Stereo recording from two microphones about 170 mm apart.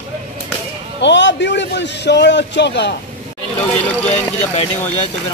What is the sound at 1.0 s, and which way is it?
A man's voice, 90° left.